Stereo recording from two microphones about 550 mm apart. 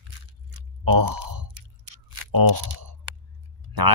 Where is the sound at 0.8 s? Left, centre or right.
Right.